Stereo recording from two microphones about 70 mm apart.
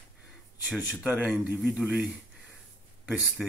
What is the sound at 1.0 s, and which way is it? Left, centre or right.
Speech, right.